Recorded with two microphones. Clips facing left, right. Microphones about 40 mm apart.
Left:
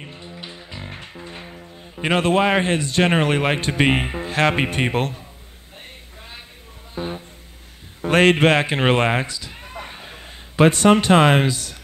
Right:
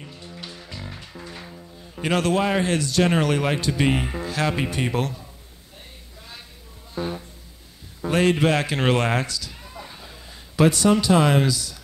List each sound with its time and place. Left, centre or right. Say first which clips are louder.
0.0 s music: left 3 dB; left
0.3 s music: left 2 dB; left
0.8 s music: left 3 dB; left
1.1 s speech: left 2 dB; left
7.0 s music: even; left
8.1 s a man's voice: left 5 dB; left
8.5 s speech: left 3 dB; left
9.5 s a sound: left 4 dB; left
10.5 s a man's voice: left 4 dB; left